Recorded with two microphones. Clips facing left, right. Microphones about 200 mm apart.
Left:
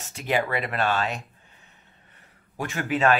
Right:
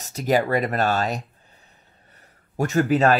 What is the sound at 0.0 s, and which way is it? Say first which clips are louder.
Speech: right 5 dB; 40° right (ahead or behind).